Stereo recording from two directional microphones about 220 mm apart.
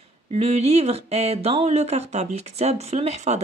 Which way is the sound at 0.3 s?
30° right (ahead or behind).